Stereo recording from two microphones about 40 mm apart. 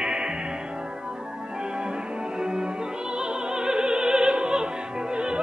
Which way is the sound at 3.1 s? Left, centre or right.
Right.